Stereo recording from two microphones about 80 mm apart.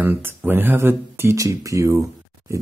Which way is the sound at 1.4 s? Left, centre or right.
Right.